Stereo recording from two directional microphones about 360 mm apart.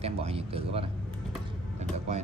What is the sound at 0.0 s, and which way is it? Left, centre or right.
A man's voice, centre.